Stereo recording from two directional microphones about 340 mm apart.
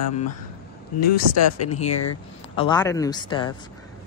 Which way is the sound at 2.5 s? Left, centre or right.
Centre.